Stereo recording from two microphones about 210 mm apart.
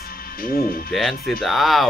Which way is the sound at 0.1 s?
45° left (ahead or behind).